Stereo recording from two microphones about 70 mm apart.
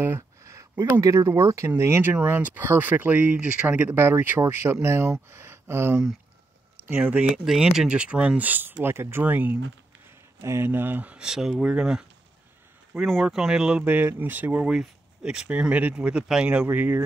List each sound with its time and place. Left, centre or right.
0.4 s a sound: right
1.0 s speech: right
1.8 s speech: right
6.9 s speech: centre
7.2 s speech: centre; by 9.2 s right
9.2 s speech: right
10.4 s speech: right; by 13.8 s centre
13.8 s speech: right
14.7 s speech: centre; by 17.0 s right